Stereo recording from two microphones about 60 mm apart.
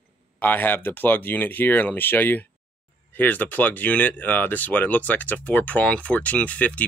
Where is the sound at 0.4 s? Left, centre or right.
Left.